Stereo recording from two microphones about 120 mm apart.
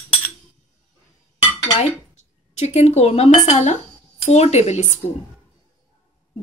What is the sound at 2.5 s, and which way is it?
A woman's voice, 65° left (ahead or behind).